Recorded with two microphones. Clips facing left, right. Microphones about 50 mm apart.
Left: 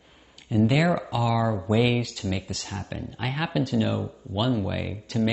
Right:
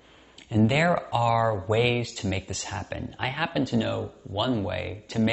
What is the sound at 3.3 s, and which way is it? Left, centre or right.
Speech, centre.